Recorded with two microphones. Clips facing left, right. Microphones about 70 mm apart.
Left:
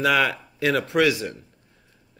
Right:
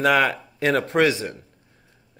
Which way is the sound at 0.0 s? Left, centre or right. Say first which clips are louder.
Right 2 dB; right.